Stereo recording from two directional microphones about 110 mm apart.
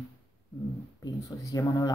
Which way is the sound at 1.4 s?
30° left (ahead or behind).